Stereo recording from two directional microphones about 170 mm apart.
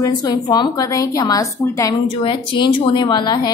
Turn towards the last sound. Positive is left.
turn(degrees=25)  # may be behind; listen again after turning